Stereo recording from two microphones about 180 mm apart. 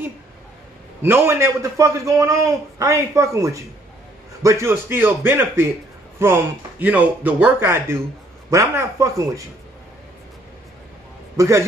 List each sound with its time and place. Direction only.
1.0 s a man's voice: 15° right (ahead or behind)
11.3 s a man's voice: 15° right (ahead or behind)